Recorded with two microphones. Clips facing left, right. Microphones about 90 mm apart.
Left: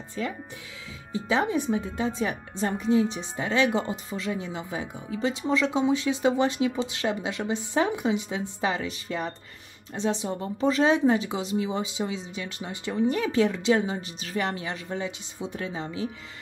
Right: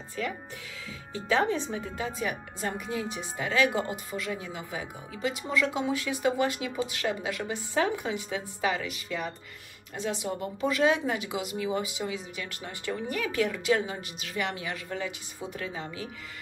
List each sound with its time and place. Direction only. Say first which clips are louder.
0.2 s speech: left 2 dB; 25° left (ahead or behind)